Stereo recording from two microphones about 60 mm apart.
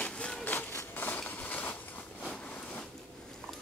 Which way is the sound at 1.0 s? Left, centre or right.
Left.